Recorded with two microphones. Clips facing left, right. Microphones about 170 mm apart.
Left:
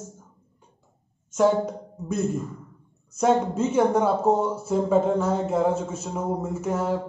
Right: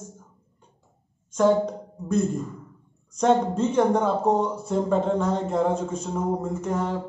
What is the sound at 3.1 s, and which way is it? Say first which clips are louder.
Speech: even; 5° left (ahead or behind).